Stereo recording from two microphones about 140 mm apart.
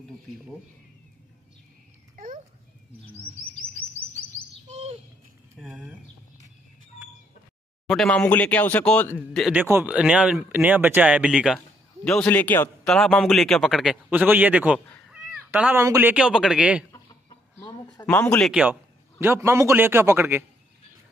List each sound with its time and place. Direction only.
2.1 s a sound: 70° right (ahead or behind)
4.6 s bird: 50° right (ahead or behind)
5.7 s speech: 10° right (ahead or behind)
7.9 s speech: 5° left (ahead or behind)
9.5 s speech: 15° right (ahead or behind)
12.0 s a man's voice: 5° left (ahead or behind)
14.1 s speech: 10° right (ahead or behind)
16.9 s chicken: 25° left (ahead or behind)
18.0 s speech: 10° left (ahead or behind)
18.4 s speech: 10° right (ahead or behind)